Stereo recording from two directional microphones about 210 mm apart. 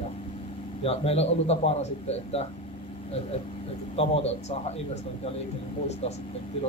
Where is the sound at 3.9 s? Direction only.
30° left (ahead or behind).